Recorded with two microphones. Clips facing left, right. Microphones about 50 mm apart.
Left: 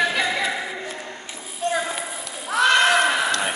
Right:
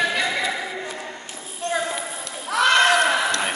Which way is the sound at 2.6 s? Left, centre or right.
Centre.